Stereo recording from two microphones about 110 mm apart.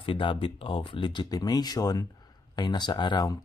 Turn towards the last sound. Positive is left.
turn(degrees=40)  # may be behind; listen again after turning